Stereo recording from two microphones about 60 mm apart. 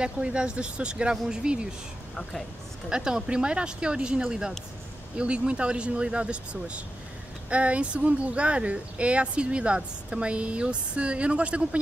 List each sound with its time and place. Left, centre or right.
0.0 s speech: centre
2.9 s speech: centre